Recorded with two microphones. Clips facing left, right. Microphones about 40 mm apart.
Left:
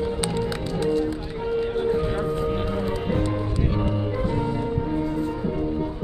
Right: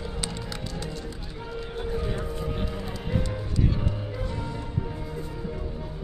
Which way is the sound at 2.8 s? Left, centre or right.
Centre.